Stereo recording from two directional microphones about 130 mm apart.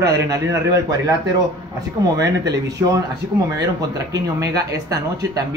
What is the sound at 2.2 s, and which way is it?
Speech, 25° right (ahead or behind).